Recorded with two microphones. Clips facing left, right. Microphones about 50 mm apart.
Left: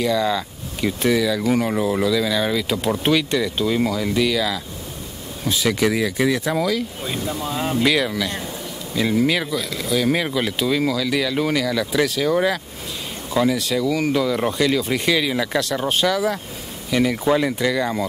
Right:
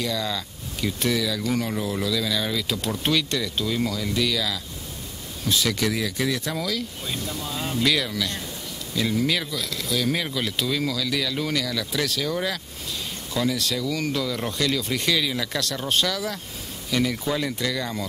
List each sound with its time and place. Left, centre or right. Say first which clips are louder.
0.0 s speech: left 8 dB; centre